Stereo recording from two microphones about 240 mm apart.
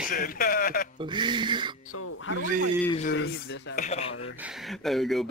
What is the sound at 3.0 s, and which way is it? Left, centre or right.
Speech, left.